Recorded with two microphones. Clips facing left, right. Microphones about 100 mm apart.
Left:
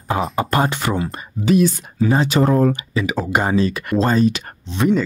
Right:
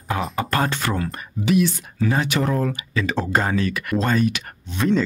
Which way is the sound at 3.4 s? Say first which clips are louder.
Left 4 dB; 25° left (ahead or behind).